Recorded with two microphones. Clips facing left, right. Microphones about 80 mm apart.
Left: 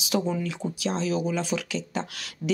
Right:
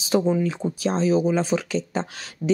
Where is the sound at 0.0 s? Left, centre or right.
Right.